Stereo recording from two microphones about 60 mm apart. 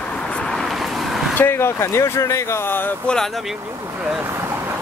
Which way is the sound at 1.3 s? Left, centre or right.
Left.